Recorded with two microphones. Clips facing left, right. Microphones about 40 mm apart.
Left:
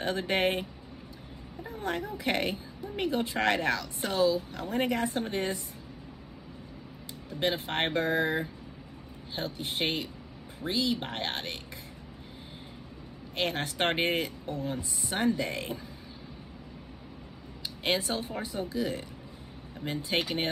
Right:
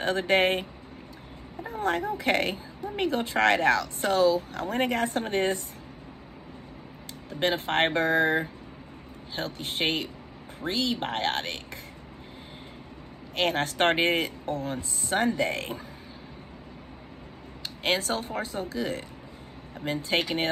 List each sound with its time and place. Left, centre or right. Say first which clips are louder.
0.0 s speech: right 5 dB; right
1.7 s speech: right 6 dB; right
7.2 s speech: right 4 dB; right
13.4 s speech: right 5 dB; right
18.0 s speech: right 3 dB; right
19.8 s speech: right 4 dB; right
20.1 s speech: right 3 dB; right